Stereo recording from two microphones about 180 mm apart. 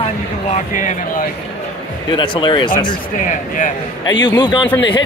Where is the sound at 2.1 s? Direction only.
25° left (ahead or behind).